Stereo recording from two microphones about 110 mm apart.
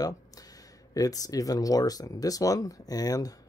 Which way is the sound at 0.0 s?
35° left (ahead or behind).